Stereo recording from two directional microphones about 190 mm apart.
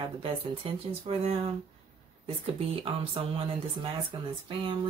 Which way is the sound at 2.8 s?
30° right (ahead or behind).